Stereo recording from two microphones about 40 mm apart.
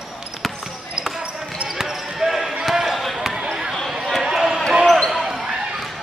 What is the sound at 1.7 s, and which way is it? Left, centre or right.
Basketball bounce, centre.